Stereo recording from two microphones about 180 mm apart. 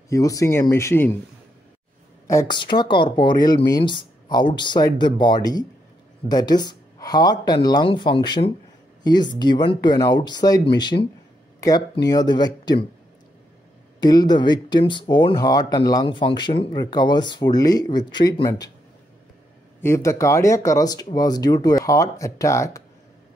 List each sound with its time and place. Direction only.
0.1 s speech: 20° left (ahead or behind)
2.2 s speech: 20° left (ahead or behind)
10.9 s speech: 45° left (ahead or behind)
11.6 s speech: 20° left (ahead or behind)
13.9 s speech: 20° left (ahead or behind)
19.8 s speech: 15° left (ahead or behind)